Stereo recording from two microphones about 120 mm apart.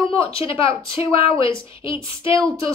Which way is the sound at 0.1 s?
50° left (ahead or behind).